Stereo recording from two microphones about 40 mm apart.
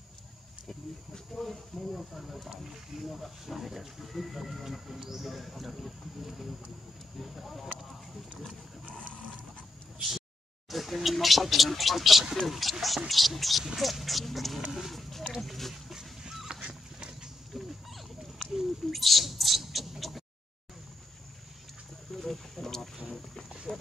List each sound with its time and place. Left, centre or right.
0.7 s speech: centre
8.8 s roaring cats: left
10.7 s speech: centre
14.6 s a sound: centre
15.4 s speech: centre
15.9 s dog: centre
16.6 s dog: right
17.6 s a sound: centre
18.5 s speech: centre
22.1 s wild animals: centre
23.7 s speech: left